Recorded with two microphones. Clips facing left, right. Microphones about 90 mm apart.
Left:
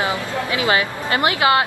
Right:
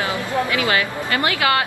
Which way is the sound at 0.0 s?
20° left (ahead or behind).